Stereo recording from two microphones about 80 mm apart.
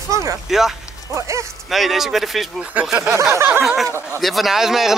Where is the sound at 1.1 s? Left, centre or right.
Right.